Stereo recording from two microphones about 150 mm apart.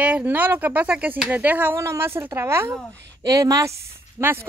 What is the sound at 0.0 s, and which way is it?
Speech, 10° right (ahead or behind).